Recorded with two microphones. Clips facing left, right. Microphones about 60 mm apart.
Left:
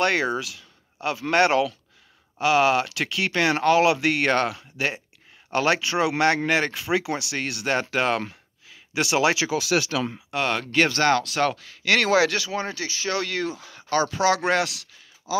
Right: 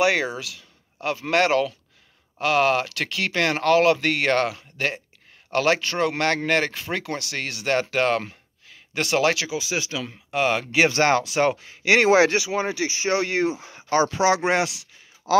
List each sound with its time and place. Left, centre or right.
0.0 s speech: centre
9.6 s speech: left
10.3 s speech: centre
10.9 s speech: right
12.4 s speech: centre
15.3 s speech: right